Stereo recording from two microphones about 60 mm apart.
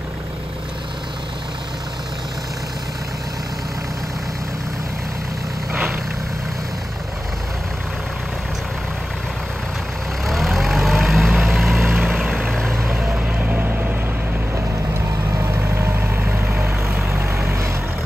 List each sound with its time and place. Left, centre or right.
10.2 s vehicle: centre
11.9 s vehicle: centre
12.4 s vehicle: centre
13.1 s vehicle: right
15.0 s vehicle: right
17.1 s vehicle: right